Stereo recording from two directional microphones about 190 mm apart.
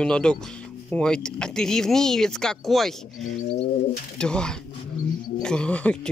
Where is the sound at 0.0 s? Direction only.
5° left (ahead or behind).